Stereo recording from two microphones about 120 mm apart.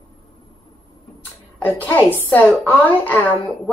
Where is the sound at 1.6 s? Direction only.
15° left (ahead or behind).